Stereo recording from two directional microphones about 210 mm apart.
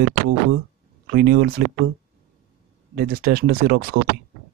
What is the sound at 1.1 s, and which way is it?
Speech, 45° right (ahead or behind).